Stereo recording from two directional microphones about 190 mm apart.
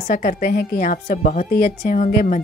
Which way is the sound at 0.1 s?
45° left (ahead or behind).